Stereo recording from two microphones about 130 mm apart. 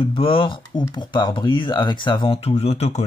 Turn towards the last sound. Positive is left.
turn(degrees=55)  # may be behind; listen again after turning